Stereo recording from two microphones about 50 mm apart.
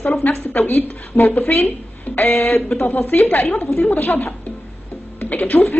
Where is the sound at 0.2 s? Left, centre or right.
Left.